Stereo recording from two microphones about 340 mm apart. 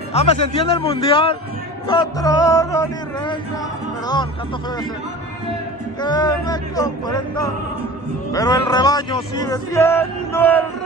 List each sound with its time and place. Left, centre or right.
0.1 s a man's voice: centre
5.9 s a man's voice: centre